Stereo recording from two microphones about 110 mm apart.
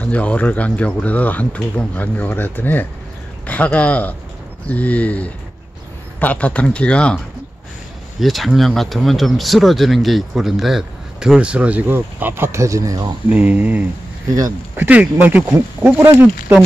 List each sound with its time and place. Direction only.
0.0 s speech: 15° left (ahead or behind)
8.2 s speech: centre (ahead or behind); by 13.1 s 30° right (ahead or behind)
13.3 s speech: 15° right (ahead or behind)